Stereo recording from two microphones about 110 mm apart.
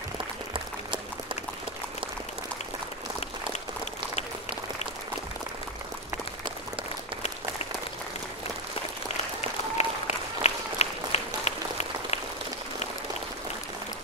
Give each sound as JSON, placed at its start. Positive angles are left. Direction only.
{"t": 9.4, "sound": "applause", "side_deg": 85}